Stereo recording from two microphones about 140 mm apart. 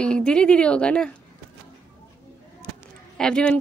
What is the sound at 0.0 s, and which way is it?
Speech, 5° left (ahead or behind).